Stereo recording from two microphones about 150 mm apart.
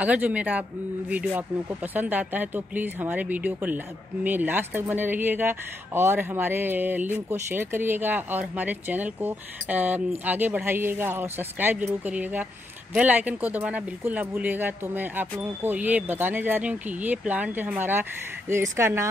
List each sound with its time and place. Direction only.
0.0 s speech: 10° right (ahead or behind)